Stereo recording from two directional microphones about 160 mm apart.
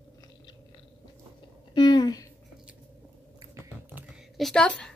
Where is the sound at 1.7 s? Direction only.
25° left (ahead or behind).